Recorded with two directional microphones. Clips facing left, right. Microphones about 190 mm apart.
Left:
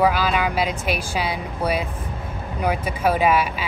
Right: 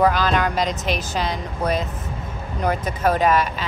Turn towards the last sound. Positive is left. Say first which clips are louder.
# even
turn(degrees=10)  # may be behind; listen again after turning